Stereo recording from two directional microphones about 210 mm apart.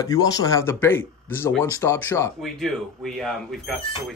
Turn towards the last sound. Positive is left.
turn(degrees=0)  # may be behind; listen again after turning